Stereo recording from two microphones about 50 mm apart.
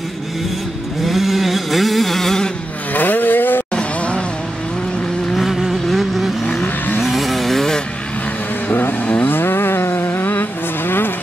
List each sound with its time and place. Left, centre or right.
1.0 s vehicle: centre
2.9 s vehicle: left
3.7 s a sound: left
5.4 s vehicle: centre
8.6 s vehicle: left
9.2 s a sound: left